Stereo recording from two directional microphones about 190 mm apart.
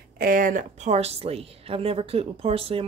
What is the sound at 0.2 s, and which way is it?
A woman's voice, 45° right (ahead or behind).